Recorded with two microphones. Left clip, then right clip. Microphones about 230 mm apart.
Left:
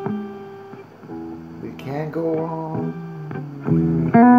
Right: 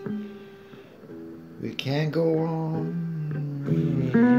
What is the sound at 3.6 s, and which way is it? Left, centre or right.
Music, left.